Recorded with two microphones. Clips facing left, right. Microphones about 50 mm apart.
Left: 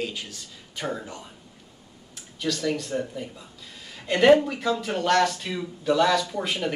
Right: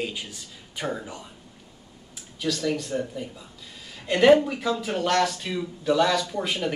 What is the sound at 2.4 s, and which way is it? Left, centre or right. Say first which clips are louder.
Speech: even; centre.